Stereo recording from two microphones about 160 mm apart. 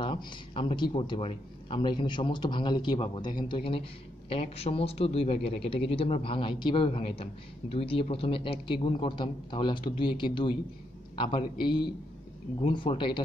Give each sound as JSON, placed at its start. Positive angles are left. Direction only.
{"t": 0.0, "sound": "a man's voice", "side_deg": 30}